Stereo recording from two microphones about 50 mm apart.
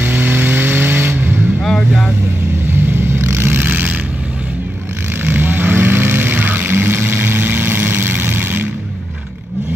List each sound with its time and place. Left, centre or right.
0.0 s vehicle: right
1.6 s vehicle: centre
2.9 s vehicle: right
5.2 s vehicle: right